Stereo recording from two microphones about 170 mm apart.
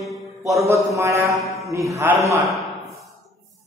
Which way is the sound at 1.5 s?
20° right (ahead or behind).